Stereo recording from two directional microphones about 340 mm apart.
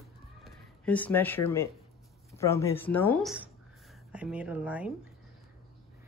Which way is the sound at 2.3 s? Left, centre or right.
Centre.